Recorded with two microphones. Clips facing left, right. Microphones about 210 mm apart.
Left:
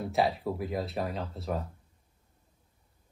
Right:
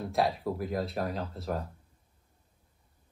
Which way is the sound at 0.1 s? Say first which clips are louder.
Even; centre (ahead or behind).